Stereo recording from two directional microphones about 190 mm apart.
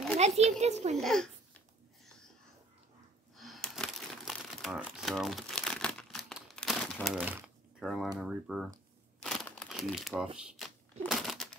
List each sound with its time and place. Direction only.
0.4 s a child's voice: 35° right (ahead or behind)
0.9 s speech: centre (ahead or behind)
3.3 s crumpling: centre (ahead or behind)
8.2 s speech: centre (ahead or behind)
9.2 s crumpling: centre (ahead or behind)